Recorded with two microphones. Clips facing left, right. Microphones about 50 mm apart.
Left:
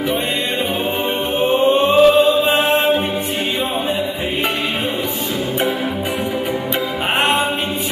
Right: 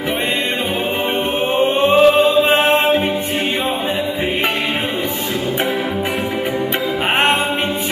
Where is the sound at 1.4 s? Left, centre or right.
Right.